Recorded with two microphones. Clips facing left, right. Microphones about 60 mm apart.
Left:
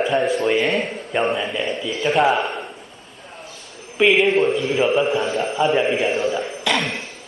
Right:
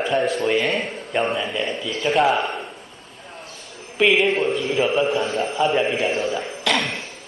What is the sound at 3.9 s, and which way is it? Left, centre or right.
A man's voice, centre.